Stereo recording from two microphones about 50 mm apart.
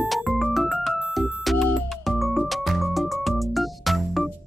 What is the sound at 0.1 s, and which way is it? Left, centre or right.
Music, centre.